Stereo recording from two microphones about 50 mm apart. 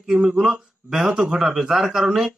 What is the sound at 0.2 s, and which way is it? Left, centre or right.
Speech, centre.